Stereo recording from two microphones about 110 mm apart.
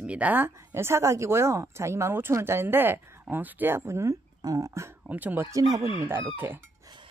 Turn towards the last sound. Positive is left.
turn(degrees=-20)  # may be behind; listen again after turning